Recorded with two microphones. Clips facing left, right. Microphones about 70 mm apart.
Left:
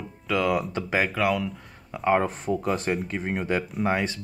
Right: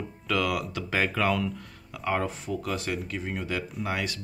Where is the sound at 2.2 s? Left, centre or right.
Left.